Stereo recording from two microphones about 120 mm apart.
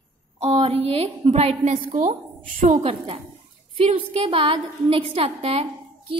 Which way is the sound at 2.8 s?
50° right (ahead or behind).